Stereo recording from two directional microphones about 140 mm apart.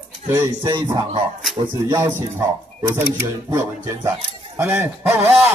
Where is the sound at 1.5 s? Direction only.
35° right (ahead or behind).